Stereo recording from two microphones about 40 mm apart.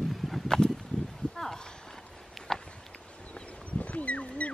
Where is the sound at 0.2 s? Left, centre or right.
Centre.